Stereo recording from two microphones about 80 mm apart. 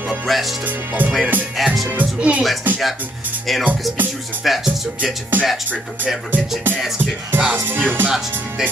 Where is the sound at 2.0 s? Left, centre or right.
Centre.